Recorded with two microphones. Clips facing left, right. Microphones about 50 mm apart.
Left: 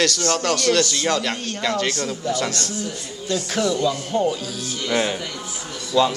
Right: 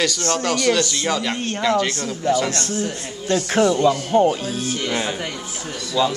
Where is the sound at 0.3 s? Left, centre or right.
Centre.